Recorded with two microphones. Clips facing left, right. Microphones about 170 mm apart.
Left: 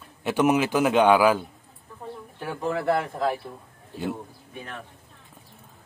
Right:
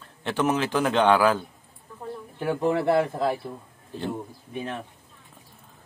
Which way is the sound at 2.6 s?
20° right (ahead or behind).